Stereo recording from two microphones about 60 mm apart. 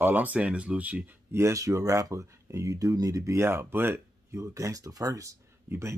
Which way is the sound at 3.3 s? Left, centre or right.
Right.